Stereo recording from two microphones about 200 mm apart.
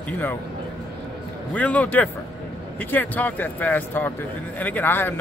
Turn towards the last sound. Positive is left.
turn(degrees=10)  # may be behind; listen again after turning